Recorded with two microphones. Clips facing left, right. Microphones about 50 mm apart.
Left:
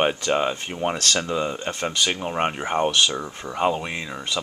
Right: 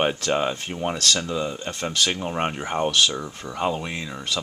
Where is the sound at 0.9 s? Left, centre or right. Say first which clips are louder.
Right 2 dB; left.